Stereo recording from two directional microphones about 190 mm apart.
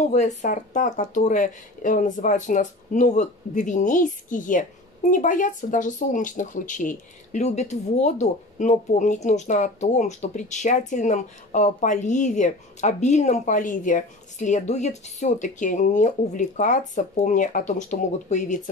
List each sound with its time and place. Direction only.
0.1 s speech: 40° left (ahead or behind)